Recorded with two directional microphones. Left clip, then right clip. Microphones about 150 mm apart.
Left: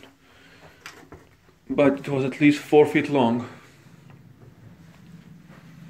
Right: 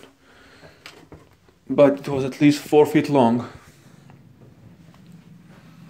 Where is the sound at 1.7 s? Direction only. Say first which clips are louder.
Right 4 dB; 25° right (ahead or behind).